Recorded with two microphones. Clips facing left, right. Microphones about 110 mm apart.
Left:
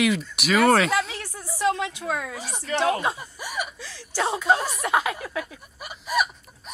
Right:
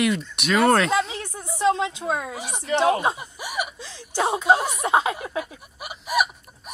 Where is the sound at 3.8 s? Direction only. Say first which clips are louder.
Right 3 dB; 20° right (ahead or behind).